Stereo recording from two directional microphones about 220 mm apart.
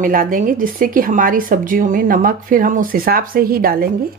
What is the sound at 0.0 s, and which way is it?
Speech, 40° right (ahead or behind).